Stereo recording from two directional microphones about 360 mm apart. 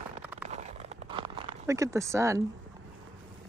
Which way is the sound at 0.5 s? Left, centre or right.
Centre.